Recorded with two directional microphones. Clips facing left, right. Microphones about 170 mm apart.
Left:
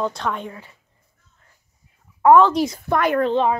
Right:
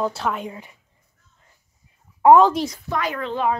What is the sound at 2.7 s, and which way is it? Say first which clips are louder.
Speech: left 7 dB; 55° left (ahead or behind).